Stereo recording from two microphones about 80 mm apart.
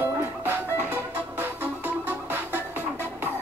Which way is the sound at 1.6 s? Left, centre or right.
Right.